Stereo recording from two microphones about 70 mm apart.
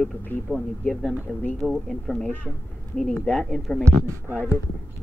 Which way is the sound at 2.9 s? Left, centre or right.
Centre.